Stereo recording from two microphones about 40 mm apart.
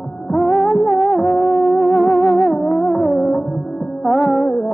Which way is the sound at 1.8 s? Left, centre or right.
Left.